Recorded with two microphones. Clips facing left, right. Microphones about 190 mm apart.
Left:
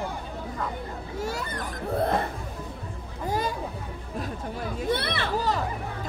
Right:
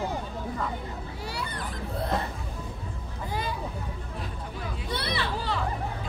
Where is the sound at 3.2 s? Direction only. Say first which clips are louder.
Left 5 dB; 45° left (ahead or behind).